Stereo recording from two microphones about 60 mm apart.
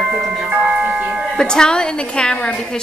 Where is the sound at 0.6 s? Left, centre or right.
Centre.